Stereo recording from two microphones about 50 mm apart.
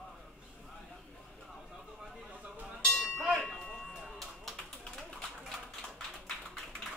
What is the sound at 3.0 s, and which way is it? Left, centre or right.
Church bell, centre.